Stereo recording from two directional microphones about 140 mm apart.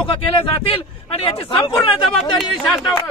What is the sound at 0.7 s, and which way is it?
A man's voice, 45° left (ahead or behind).